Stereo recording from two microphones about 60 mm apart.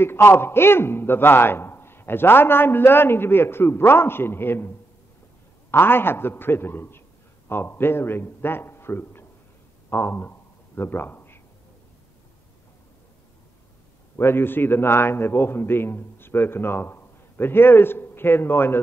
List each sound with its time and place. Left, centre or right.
0.0 s a man's voice: left
9.8 s a sound: left
14.1 s a man's voice: left